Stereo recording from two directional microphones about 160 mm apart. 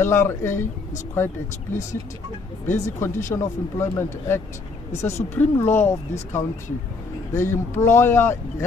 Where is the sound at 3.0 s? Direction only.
15° left (ahead or behind).